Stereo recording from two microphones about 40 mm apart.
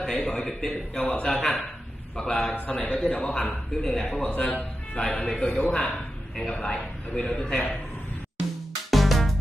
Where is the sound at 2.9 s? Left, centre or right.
Centre.